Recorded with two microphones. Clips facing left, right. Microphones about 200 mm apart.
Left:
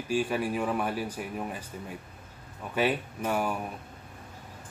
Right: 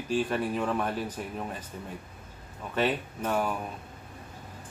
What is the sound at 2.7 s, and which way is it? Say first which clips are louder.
Speech: even; 10° left (ahead or behind).